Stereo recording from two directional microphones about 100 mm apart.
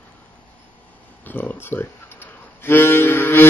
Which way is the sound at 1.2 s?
15° left (ahead or behind).